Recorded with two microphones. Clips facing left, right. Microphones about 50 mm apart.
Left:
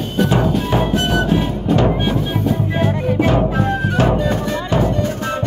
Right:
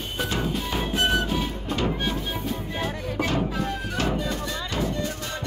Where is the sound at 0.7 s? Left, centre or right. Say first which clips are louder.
Left 7 dB; left.